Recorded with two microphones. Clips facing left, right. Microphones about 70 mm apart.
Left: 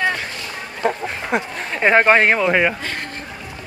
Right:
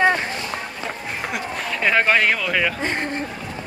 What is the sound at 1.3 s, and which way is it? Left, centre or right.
Speech, left.